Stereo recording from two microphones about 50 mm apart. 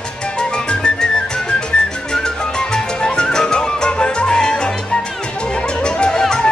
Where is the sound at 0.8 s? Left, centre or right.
Centre.